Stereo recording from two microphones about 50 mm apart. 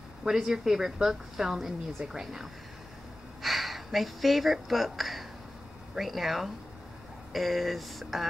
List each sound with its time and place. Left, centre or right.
0.2 s speech: centre
2.0 s speech: centre
3.4 s speech: centre